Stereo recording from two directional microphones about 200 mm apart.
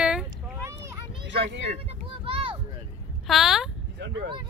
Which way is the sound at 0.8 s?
60° right (ahead or behind).